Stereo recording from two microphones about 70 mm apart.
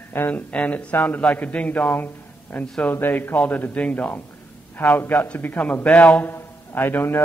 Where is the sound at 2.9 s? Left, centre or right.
Left.